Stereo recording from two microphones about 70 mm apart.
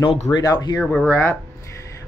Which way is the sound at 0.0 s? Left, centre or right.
Left.